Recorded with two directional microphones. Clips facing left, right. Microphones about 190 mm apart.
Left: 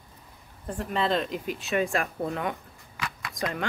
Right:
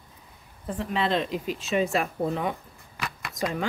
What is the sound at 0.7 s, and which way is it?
A woman's voice, centre (ahead or behind).